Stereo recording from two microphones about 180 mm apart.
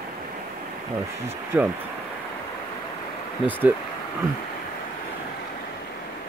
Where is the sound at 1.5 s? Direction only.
10° right (ahead or behind).